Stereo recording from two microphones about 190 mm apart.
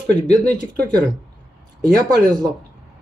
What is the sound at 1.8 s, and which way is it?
Speech, 20° right (ahead or behind).